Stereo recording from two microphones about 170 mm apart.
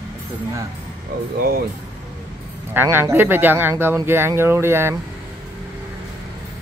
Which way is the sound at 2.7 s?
10° right (ahead or behind).